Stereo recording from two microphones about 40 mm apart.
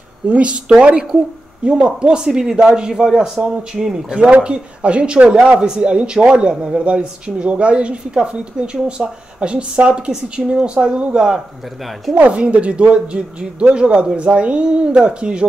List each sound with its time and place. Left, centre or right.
0.3 s a woman's voice: right
12.2 s a woman's voice: right